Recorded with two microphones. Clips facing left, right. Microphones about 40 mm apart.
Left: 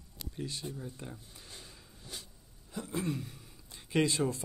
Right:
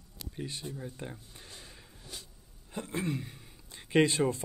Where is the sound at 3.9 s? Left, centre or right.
Right.